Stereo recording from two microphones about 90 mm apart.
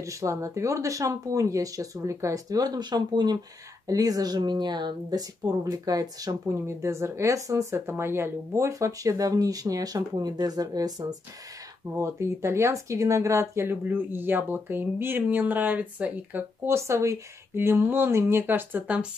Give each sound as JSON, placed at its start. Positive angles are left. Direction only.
{"t": 0.0, "sound": "speech", "side_deg": -35}
{"t": 3.8, "sound": "speech", "side_deg": -40}
{"t": 11.9, "sound": "speech", "side_deg": -30}
{"t": 16.6, "sound": "speech", "side_deg": -30}